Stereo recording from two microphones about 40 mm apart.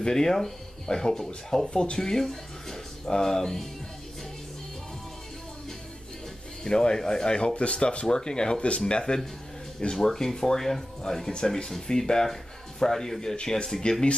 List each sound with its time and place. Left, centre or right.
0.0 s speech: centre
6.6 s speech: centre
9.9 s speech: centre
13.4 s speech: left